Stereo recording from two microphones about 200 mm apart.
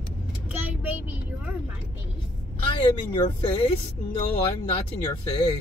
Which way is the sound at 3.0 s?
20° left (ahead or behind).